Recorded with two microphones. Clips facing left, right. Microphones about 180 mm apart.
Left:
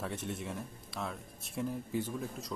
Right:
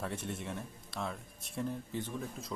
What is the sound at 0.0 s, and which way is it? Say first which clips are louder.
Speech: left 1 dB; centre (ahead or behind).